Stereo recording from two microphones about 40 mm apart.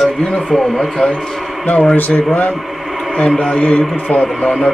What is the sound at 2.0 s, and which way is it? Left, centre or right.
Speech, left.